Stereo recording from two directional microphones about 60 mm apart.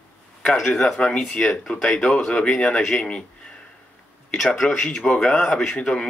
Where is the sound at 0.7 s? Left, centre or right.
Centre.